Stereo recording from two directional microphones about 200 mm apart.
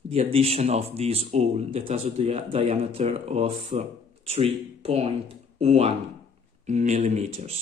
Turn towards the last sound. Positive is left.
turn(degrees=-35)  # may be behind; listen again after turning